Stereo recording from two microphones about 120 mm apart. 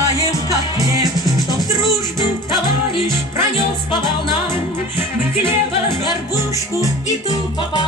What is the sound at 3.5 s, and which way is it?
Music, 40° left (ahead or behind).